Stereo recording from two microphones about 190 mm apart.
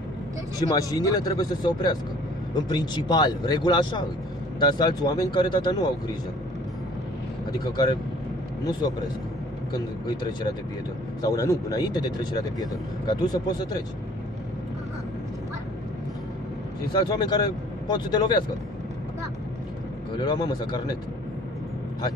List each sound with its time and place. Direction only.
0.6 s speech: 20° left (ahead or behind)
7.7 s speech: 20° left (ahead or behind)
9.7 s speech: 20° left (ahead or behind)
16.9 s speech: 20° left (ahead or behind)
20.2 s speech: 20° left (ahead or behind)